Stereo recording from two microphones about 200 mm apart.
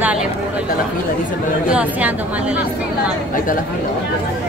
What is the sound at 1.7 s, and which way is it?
Speech, 5° right (ahead or behind).